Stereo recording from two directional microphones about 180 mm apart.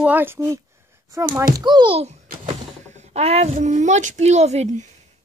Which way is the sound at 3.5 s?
40° right (ahead or behind).